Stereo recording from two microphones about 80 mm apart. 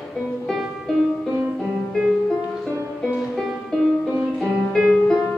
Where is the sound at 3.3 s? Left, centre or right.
Centre.